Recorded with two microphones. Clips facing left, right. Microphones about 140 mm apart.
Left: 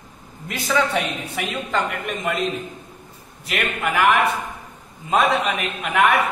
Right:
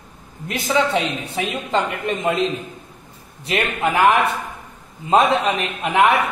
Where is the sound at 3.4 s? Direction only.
30° right (ahead or behind).